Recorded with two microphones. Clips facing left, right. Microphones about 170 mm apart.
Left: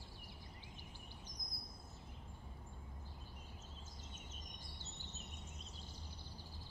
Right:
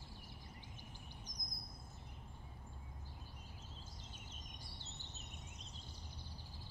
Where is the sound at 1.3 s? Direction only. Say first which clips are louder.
Even; 45° right (ahead or behind).